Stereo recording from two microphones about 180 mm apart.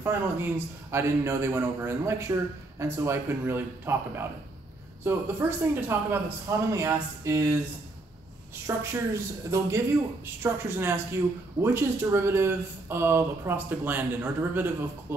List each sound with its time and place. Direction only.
0.0 s speech: 10° right (ahead or behind)
8.6 s speech: 15° right (ahead or behind)